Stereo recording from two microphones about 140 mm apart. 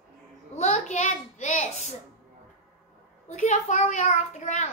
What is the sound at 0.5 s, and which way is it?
A child's voice, 55° left (ahead or behind).